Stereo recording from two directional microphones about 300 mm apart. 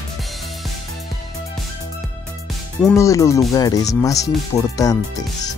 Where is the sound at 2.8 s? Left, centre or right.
Centre.